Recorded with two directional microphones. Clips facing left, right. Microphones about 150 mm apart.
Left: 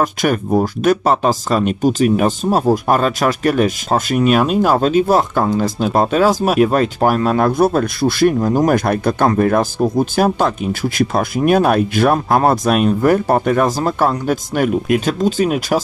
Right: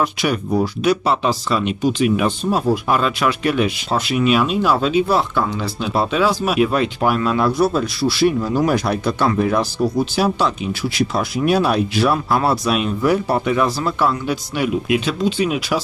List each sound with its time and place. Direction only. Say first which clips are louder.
0.0 s speech: left 3 dB; 45° left (ahead or behind)